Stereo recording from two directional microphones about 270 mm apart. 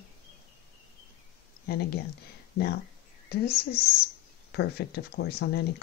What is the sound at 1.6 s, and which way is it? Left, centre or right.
Speech, left.